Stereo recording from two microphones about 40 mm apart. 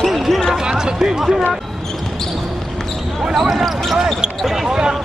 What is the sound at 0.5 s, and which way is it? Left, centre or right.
Basketball bounce, centre.